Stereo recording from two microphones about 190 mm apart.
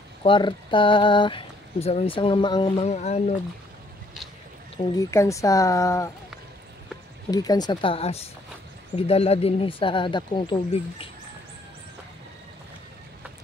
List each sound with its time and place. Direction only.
0.2 s speech: 25° left (ahead or behind)
4.9 s speech: 15° left (ahead or behind)
7.2 s speech: 20° left (ahead or behind)